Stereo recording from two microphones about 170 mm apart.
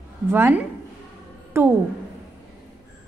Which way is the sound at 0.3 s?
10° right (ahead or behind).